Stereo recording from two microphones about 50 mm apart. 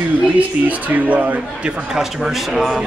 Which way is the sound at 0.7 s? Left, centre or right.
Right.